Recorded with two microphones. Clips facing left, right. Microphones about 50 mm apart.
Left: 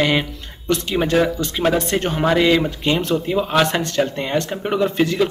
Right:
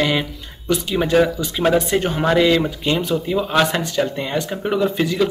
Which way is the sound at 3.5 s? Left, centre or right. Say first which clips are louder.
Even; centre.